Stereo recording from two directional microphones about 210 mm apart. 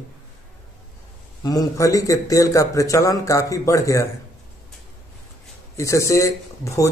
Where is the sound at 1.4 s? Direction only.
15° left (ahead or behind).